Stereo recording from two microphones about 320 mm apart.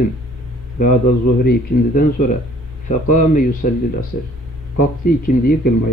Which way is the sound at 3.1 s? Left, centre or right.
Left.